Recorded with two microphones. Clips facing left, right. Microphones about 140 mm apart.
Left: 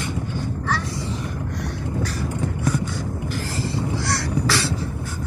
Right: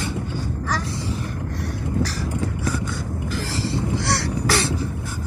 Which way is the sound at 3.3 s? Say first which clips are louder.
Right 3 dB; 90° right.